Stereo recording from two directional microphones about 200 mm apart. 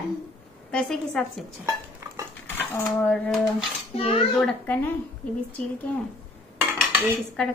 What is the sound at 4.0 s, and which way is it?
Speech, 25° left (ahead or behind).